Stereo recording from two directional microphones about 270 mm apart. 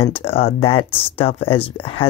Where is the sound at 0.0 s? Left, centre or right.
Left.